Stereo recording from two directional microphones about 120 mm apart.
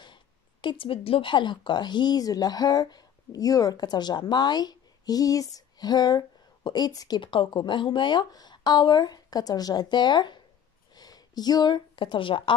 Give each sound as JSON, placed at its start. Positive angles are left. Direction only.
{"t": 0.0, "sound": "speech", "side_deg": 40}